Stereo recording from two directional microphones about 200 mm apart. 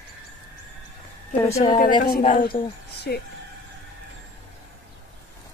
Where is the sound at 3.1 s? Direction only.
50° left (ahead or behind).